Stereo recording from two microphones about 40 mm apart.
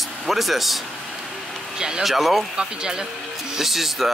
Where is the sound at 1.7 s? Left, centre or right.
Centre.